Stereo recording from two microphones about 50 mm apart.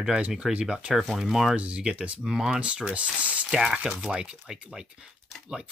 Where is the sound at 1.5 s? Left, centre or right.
Right.